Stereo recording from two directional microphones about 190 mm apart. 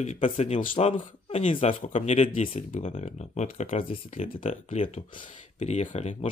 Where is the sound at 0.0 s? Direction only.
35° left (ahead or behind).